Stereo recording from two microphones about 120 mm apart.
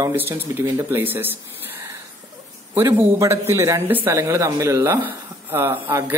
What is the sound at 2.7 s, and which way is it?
Speech, 20° right (ahead or behind).